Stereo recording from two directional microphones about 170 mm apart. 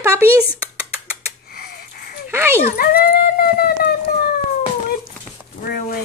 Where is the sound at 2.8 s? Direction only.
60° left (ahead or behind).